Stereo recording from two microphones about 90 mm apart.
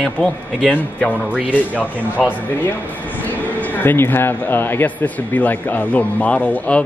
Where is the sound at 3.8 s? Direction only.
25° left (ahead or behind).